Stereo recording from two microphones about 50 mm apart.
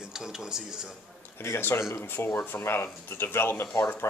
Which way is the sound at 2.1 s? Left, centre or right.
Left.